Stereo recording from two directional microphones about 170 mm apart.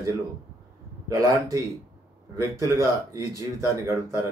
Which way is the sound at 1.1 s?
20° right (ahead or behind).